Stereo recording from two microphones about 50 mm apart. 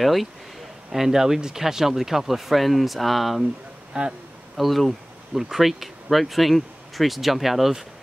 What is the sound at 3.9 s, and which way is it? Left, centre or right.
Speech, centre.